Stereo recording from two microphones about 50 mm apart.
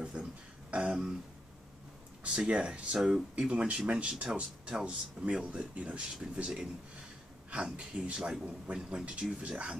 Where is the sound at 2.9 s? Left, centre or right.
Centre.